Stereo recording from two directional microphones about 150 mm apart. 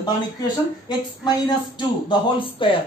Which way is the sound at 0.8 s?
30° left (ahead or behind).